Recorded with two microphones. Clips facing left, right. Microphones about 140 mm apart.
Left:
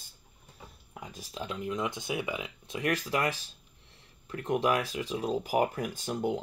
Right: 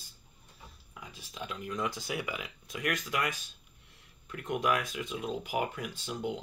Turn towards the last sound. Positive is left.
turn(degrees=45)  # may be behind; listen again after turning